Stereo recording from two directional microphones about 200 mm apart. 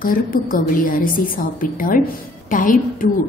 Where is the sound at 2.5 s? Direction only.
40° left (ahead or behind).